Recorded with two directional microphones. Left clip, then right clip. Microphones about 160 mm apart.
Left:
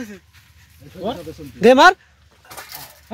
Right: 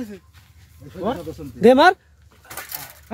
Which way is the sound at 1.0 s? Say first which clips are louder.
Right 1 dB; 15° left (ahead or behind).